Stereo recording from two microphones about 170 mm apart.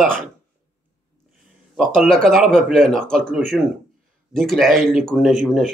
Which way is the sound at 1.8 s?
5° left (ahead or behind).